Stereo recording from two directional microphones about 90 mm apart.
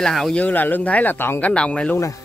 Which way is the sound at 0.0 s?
5° left (ahead or behind).